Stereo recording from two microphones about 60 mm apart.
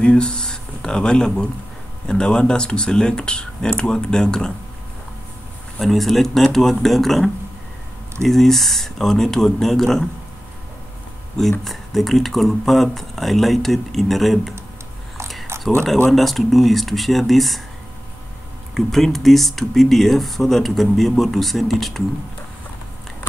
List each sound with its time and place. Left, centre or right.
0.0 s speech: centre
5.8 s speech: centre
8.3 s speech: centre
11.6 s speech: centre
15.5 s a sound: right
16.1 s speech: centre
18.8 s speech: centre